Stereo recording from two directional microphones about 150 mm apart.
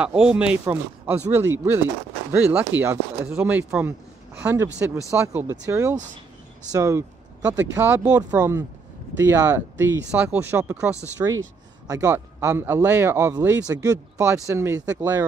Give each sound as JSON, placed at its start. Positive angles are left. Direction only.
{"t": 0.0, "sound": "speech", "side_deg": -5}
{"t": 8.2, "sound": "speech", "side_deg": -25}